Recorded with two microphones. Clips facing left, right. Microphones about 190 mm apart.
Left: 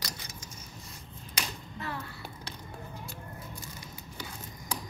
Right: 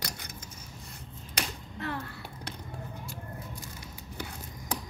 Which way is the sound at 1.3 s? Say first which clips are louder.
Right 2 dB; 60° right (ahead or behind).